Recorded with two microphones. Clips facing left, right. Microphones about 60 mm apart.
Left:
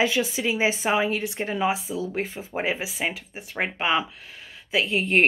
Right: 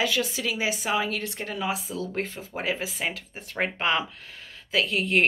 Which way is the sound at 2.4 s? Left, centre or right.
Left.